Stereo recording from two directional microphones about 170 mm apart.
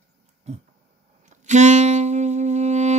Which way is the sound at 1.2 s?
45° right (ahead or behind).